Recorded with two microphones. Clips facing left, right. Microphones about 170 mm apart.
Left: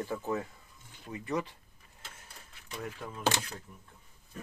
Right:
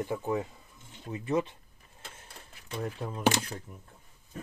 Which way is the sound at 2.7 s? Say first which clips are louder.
Right 5 dB; 30° right (ahead or behind).